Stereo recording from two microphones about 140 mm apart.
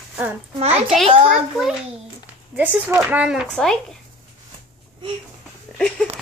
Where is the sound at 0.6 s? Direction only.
50° right (ahead or behind).